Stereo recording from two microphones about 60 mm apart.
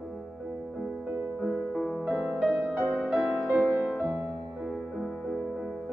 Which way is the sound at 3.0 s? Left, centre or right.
Centre.